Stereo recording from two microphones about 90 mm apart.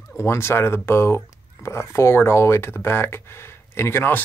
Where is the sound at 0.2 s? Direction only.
30° left (ahead or behind).